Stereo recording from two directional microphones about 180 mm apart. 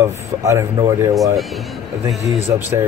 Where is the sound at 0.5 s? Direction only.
15° right (ahead or behind).